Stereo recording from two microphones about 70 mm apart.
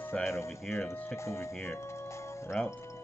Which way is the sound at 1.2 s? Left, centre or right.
Left.